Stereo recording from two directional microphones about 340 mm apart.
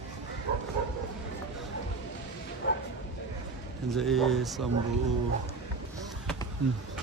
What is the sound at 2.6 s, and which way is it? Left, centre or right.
Bow-wow, left.